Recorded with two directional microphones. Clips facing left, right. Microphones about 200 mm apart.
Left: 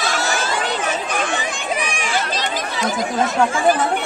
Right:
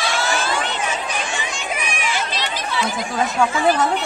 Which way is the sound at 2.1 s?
50° left (ahead or behind).